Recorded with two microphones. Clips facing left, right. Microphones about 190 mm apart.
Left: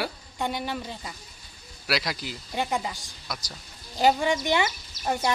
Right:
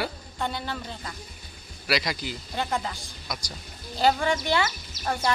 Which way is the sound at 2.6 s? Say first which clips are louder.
Left 1 dB; 10° left (ahead or behind).